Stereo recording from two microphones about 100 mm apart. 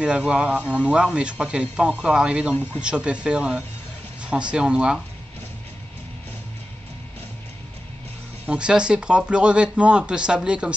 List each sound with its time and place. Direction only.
0.0 s speech: 10° right (ahead or behind)
2.5 s speech: 20° left (ahead or behind)
2.8 s speech: 10° right (ahead or behind)
8.5 s speech: 10° right (ahead or behind)